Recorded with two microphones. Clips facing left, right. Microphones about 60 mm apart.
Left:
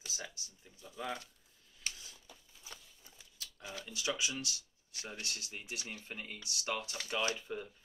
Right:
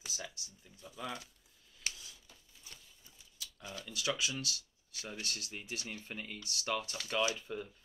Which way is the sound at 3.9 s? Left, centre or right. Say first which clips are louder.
Right 1 dB; left.